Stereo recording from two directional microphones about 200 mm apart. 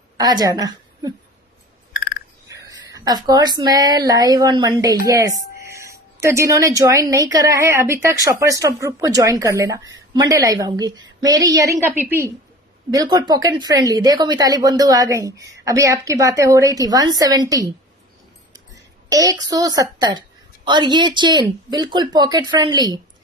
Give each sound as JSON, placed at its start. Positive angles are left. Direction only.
{"t": 0.2, "sound": "a woman's voice", "side_deg": -20}
{"t": 2.4, "sound": "a woman's voice", "side_deg": -15}
{"t": 12.9, "sound": "a woman's voice", "side_deg": -20}
{"t": 19.0, "sound": "a woman's voice", "side_deg": -15}